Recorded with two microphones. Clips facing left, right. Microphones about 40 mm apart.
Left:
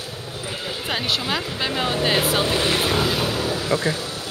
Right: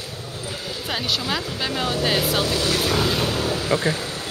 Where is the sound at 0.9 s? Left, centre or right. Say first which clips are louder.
Left 1 dB; centre.